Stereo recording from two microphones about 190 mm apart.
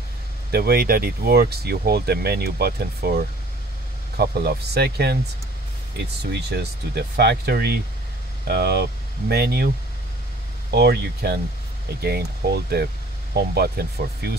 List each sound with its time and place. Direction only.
0.5 s speech: 50° right (ahead or behind)
6.3 s speech: 60° right (ahead or behind)
10.7 s speech: 55° right (ahead or behind)